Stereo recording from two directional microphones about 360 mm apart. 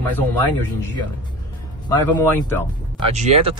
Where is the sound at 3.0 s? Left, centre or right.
Centre.